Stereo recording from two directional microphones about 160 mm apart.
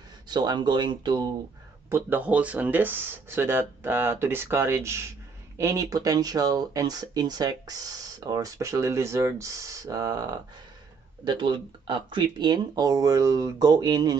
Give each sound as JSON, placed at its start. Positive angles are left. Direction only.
{"t": 0.3, "sound": "speech", "side_deg": -25}
{"t": 1.9, "sound": "speech", "side_deg": -15}